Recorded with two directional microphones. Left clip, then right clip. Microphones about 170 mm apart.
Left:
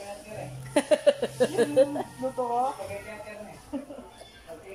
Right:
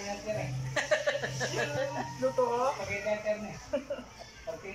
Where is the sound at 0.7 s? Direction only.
50° left (ahead or behind).